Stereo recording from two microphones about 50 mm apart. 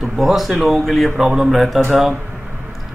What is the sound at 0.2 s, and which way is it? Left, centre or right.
Speech, centre.